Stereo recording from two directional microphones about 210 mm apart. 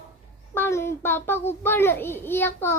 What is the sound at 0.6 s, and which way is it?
A child's voice, 10° left (ahead or behind).